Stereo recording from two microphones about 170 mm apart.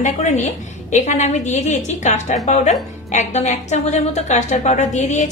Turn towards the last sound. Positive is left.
turn(degrees=45)  # may be behind; listen again after turning